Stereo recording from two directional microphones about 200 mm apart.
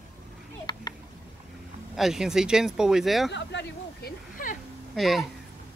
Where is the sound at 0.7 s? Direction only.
20° left (ahead or behind).